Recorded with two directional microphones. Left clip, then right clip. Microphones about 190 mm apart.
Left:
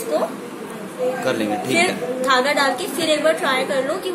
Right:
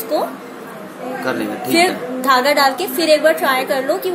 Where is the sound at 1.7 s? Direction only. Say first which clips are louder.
Right 5 dB; 35° right (ahead or behind).